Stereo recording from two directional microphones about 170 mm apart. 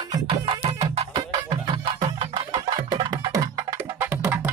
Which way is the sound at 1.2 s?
25° right (ahead or behind).